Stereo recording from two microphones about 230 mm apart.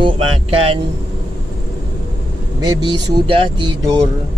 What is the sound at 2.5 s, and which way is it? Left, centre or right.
Speech, centre.